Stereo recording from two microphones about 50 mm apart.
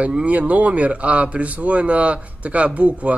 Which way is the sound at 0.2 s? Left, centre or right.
Right.